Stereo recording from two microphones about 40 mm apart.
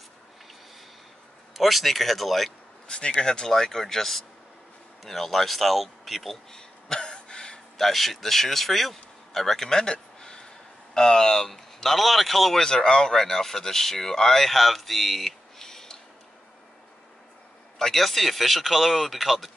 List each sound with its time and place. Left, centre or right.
1.6 s speech: centre
2.9 s speech: left
3.4 s speech: centre
6.5 s a sound: centre
7.7 s speech: centre
12.6 s speech: centre
15.6 s a sound: centre
17.7 s speech: centre